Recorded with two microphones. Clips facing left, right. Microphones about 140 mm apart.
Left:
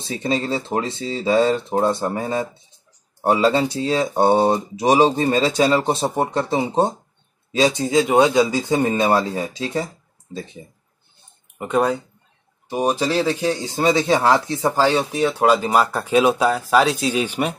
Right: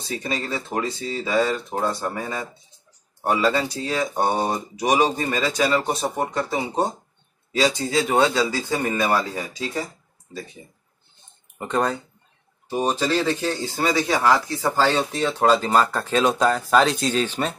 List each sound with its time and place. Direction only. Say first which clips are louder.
0.0 s speech: left 5 dB; 25° left (ahead or behind)
11.5 s speech: left 4 dB; 10° left (ahead or behind)
14.9 s speech: left 3 dB; 10° left (ahead or behind)